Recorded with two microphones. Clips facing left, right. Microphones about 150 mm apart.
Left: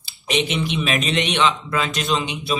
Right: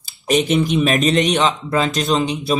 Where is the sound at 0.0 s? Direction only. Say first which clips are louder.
Right 5 dB; 45° right (ahead or behind).